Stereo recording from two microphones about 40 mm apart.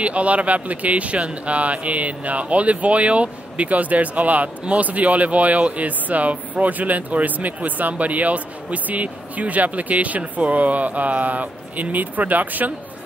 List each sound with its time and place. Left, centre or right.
0.0 s speech: right